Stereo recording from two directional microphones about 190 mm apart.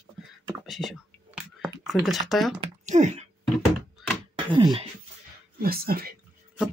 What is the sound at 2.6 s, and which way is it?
Speech, 40° right (ahead or behind).